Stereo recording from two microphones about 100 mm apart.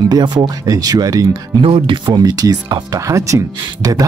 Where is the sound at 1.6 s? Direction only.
60° right (ahead or behind).